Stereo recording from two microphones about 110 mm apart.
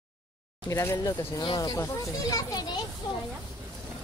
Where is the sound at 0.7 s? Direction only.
30° left (ahead or behind).